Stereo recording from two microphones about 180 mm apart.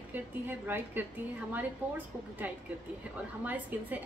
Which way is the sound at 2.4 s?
10° right (ahead or behind).